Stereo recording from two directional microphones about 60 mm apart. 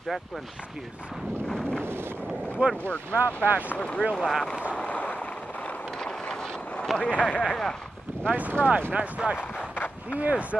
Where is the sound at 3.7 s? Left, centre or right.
Left.